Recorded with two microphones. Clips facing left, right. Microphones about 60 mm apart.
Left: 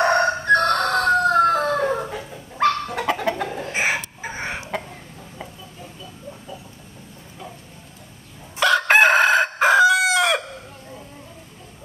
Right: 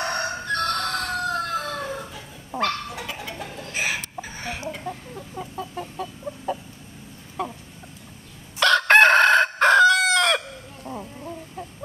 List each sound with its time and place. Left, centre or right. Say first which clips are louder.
0.0 s crowing: left 9 dB; left
3.1 s chicken: left 11 dB; left
3.4 s a sound: left 5 dB; left
4.2 s chicken: left 3 dB; left
5.6 s chicken: right 8 dB; right
7.4 s a sound: right 9 dB; right
8.5 s chicken: even; centre